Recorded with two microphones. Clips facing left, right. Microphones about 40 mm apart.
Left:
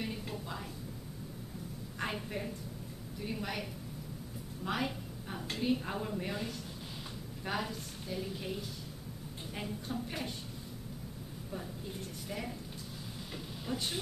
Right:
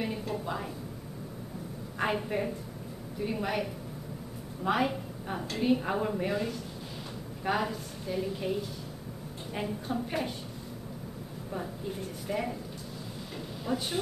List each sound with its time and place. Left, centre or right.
0.3 s a sound: centre
2.0 s a woman's voice: centre
4.6 s a woman's voice: centre
12.3 s a woman's voice: centre
13.7 s a woman's voice: centre